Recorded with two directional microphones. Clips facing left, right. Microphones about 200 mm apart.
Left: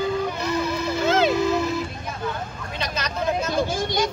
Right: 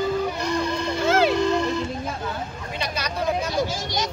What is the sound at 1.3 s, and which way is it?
Music, 5° left (ahead or behind).